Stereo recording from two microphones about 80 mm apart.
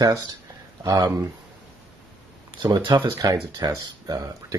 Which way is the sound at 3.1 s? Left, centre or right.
Right.